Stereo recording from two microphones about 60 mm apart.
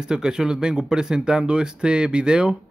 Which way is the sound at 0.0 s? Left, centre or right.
Centre.